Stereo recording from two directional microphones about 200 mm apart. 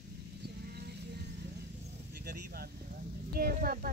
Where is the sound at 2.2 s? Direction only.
50° right (ahead or behind).